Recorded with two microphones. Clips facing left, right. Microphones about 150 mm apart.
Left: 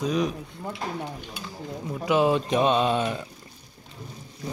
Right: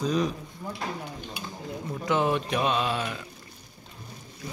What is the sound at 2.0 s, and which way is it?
Speech, 15° left (ahead or behind).